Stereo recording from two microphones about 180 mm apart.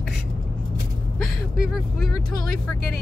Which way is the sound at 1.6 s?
Centre (ahead or behind).